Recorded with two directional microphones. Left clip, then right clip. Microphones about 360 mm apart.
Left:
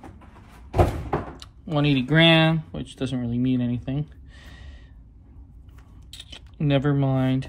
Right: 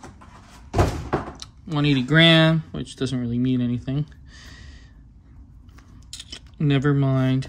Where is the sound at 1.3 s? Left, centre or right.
Centre.